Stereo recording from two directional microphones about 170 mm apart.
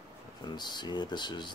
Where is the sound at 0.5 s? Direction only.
25° left (ahead or behind).